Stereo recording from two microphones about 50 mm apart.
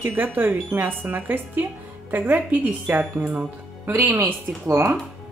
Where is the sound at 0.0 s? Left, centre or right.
Right.